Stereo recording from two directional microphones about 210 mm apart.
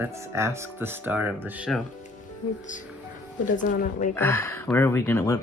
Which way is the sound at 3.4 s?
40° left (ahead or behind).